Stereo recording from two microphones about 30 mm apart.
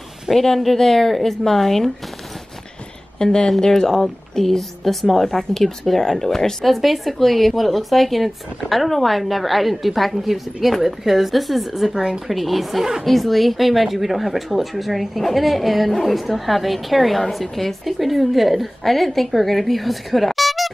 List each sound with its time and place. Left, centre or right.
0.3 s a woman's voice: centre
3.2 s a woman's voice: left
6.6 s speech: centre
11.9 s speech: centre
12.3 s speech: centre